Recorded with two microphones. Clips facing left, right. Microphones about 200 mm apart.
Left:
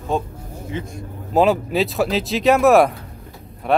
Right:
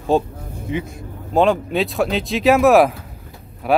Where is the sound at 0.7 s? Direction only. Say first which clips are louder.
Right 4 dB; 20° right (ahead or behind).